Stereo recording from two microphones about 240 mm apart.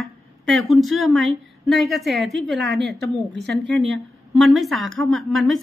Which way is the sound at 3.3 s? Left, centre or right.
Right.